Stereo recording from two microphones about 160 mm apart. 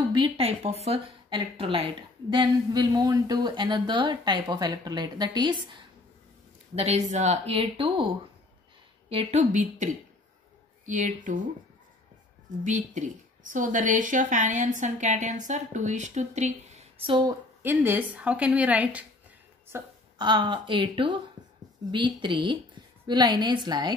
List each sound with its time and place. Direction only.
0.1 s speech: 40° right (ahead or behind)
6.7 s speech: 40° right (ahead or behind)
9.1 s a woman's voice: 40° right (ahead or behind)
10.9 s a woman's voice: 50° right (ahead or behind)
12.6 s a woman's voice: 50° right (ahead or behind)
17.6 s speech: 10° right (ahead or behind)
20.2 s speech: 30° right (ahead or behind)
22.2 s speech: 30° right (ahead or behind)